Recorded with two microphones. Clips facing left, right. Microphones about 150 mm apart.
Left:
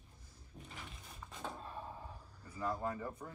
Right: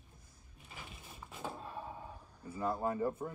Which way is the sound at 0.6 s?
5° right (ahead or behind).